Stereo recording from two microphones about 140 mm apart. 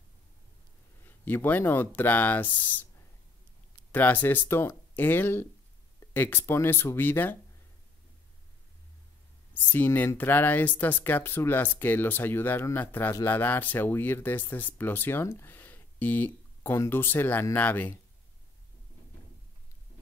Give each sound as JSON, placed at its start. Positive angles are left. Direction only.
{"t": 1.0, "sound": "speech", "side_deg": 15}
{"t": 3.9, "sound": "speech", "side_deg": 15}
{"t": 9.5, "sound": "speech", "side_deg": 10}